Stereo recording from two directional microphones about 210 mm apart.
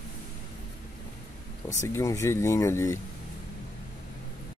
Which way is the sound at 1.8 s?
15° left (ahead or behind).